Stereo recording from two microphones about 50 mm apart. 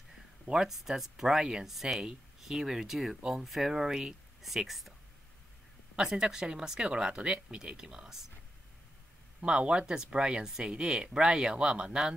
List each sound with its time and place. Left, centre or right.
0.5 s speech: centre
6.0 s speech: centre
9.4 s speech: centre